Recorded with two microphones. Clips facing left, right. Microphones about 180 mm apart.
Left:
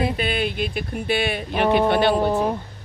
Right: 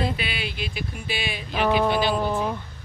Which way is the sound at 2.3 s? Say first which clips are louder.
Left 4 dB; 40° left (ahead or behind).